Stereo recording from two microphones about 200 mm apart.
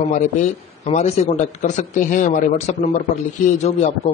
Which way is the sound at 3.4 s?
35° left (ahead or behind).